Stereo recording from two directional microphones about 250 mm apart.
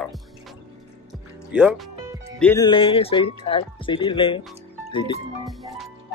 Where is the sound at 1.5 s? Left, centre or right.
Centre.